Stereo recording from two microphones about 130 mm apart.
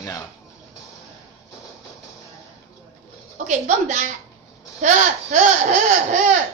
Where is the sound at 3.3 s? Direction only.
70° right (ahead or behind).